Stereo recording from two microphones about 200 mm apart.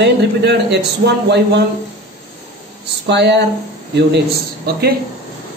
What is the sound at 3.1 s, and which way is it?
Speech, 60° right (ahead or behind).